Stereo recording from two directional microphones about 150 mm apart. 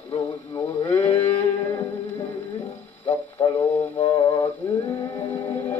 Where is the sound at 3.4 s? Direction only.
30° left (ahead or behind).